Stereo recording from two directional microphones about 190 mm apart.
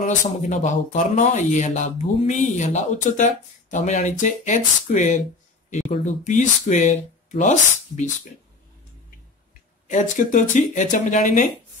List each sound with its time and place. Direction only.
0.0 s speech: 40° left (ahead or behind)
9.8 s speech: 40° left (ahead or behind)